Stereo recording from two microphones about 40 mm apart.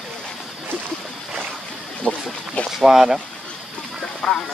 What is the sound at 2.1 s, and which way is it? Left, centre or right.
Boat, centre.